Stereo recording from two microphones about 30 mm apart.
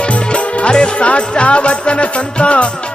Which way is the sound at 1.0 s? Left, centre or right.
Left.